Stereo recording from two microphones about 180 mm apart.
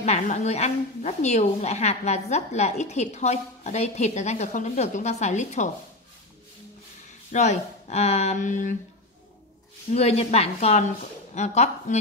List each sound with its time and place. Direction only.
0.0 s a woman's voice: 40° left (ahead or behind)
7.1 s speech: 40° left (ahead or behind)
9.9 s a woman's voice: 35° left (ahead or behind)